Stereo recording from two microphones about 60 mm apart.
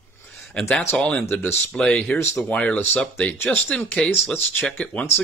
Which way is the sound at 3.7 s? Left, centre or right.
Centre.